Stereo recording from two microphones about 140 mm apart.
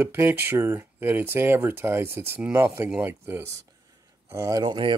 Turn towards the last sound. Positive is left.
turn(degrees=-30)  # may be behind; listen again after turning